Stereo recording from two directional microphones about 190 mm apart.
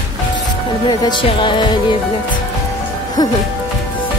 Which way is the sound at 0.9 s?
25° left (ahead or behind).